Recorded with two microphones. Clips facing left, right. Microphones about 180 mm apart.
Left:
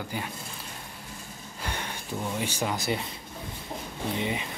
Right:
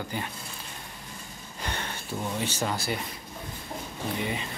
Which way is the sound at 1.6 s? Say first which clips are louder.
Right 1 dB; 10° left (ahead or behind).